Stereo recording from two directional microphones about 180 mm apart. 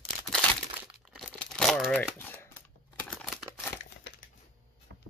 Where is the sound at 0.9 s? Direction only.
5° left (ahead or behind).